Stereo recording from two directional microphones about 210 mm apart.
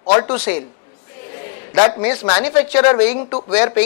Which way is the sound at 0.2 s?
10° left (ahead or behind).